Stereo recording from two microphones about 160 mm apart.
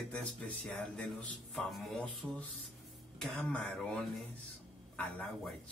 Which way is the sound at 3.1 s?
5° left (ahead or behind).